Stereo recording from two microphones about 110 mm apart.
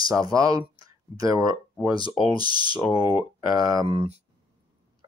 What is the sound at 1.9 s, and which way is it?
Speech, 50° left (ahead or behind).